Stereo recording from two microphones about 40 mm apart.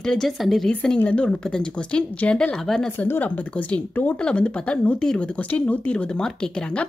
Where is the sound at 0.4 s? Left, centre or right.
Centre.